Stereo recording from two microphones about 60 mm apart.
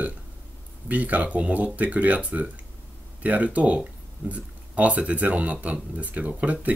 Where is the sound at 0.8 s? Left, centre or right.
Right.